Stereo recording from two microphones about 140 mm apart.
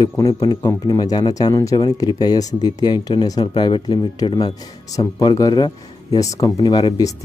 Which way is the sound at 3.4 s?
40° left (ahead or behind).